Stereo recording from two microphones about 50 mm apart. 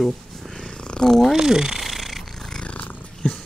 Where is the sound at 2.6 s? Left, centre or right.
Left.